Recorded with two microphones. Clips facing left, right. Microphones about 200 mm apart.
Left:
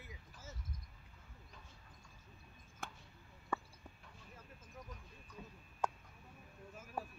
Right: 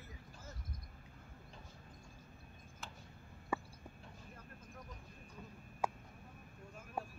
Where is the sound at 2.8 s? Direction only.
55° left (ahead or behind).